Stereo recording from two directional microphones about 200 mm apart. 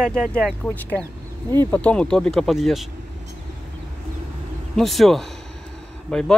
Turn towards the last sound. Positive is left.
turn(degrees=5)  # may be behind; listen again after turning